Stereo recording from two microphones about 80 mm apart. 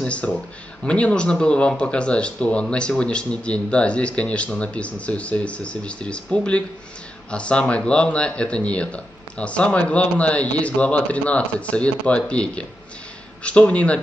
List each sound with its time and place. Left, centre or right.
0.0 s a man's voice: centre